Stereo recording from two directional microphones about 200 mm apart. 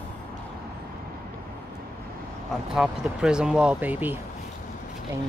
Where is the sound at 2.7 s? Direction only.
5° right (ahead or behind).